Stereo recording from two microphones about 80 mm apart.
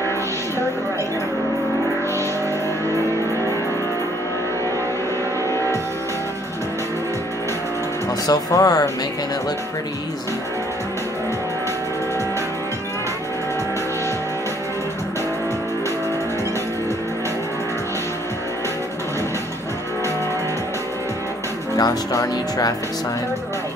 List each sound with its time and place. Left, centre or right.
8.3 s speech: left
21.7 s speech: left